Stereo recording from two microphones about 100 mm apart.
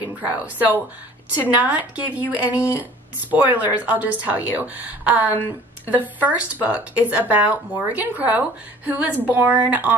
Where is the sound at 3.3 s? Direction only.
15° right (ahead or behind).